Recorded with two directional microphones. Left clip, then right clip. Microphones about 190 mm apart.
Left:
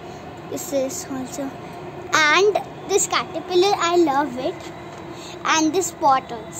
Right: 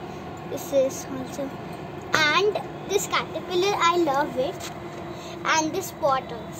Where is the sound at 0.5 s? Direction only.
25° left (ahead or behind).